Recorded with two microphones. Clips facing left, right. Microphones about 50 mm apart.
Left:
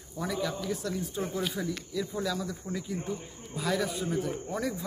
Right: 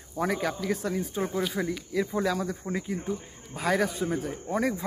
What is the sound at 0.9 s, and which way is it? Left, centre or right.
Speech, right.